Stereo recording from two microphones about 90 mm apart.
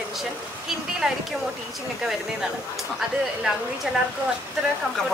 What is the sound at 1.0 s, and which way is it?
Speech, 5° right (ahead or behind).